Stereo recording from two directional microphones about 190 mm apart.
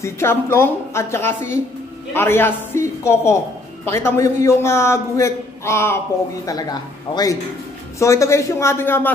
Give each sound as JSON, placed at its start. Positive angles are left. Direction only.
{"t": 0.0, "sound": "a man's voice", "side_deg": 15}